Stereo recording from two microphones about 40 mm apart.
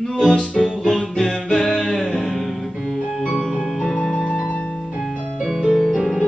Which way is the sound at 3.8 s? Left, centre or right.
Left.